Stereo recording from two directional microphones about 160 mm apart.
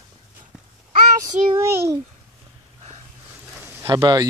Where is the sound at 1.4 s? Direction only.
50° right (ahead or behind).